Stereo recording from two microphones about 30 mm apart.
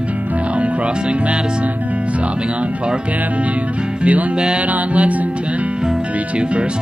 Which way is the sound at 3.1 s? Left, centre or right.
Right.